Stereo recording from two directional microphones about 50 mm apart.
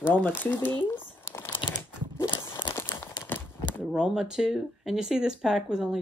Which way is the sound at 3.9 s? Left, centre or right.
Centre.